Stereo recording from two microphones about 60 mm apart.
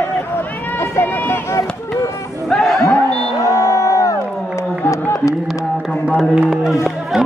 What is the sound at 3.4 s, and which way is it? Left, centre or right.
Crowd, left.